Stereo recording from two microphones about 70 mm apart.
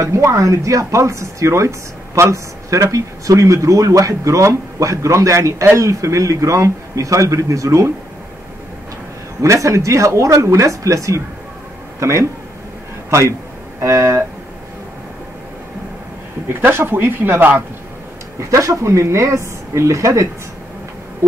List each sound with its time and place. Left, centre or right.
0.0 s speech: right
9.4 s speech: right
13.7 s speech: right
16.6 s speech: right
18.4 s speech: right